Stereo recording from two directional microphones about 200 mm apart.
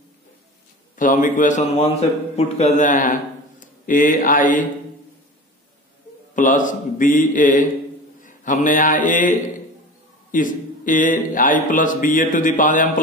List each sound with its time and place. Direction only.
0.9 s a man's voice: 40° left (ahead or behind)
6.3 s a man's voice: 40° left (ahead or behind)